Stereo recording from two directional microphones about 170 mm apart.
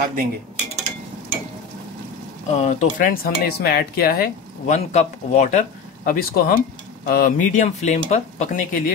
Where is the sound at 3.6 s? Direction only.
65° left (ahead or behind).